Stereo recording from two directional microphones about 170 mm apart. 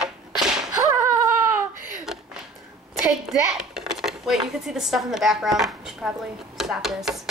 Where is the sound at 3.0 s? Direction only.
5° right (ahead or behind).